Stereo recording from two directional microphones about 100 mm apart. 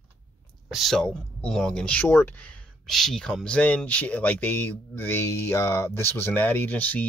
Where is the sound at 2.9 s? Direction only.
5° left (ahead or behind).